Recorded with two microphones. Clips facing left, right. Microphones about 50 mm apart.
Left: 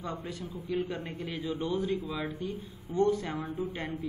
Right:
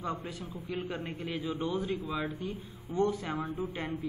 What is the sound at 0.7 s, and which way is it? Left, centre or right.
A man's voice, right.